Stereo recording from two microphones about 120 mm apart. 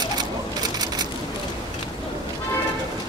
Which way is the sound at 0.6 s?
35° right (ahead or behind).